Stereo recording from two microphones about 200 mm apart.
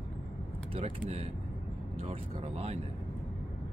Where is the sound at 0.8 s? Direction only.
30° right (ahead or behind).